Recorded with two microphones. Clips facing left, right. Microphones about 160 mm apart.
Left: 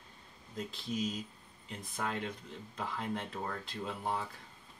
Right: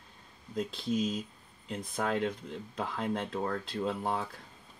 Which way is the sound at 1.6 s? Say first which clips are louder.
Right 6 dB; 65° right (ahead or behind).